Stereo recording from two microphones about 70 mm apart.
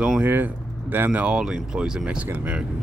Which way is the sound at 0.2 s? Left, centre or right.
Right.